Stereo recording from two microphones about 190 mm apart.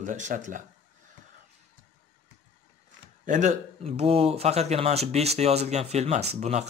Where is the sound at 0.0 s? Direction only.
40° right (ahead or behind).